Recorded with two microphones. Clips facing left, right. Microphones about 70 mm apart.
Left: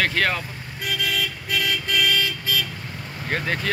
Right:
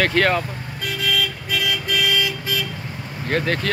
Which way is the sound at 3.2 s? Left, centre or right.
Centre.